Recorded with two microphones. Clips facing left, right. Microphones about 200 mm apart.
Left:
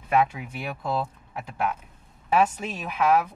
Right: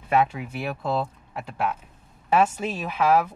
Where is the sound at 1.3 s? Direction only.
Centre (ahead or behind).